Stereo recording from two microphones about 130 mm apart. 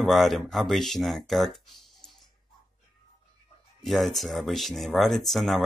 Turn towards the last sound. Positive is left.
turn(degrees=0)  # may be behind; listen again after turning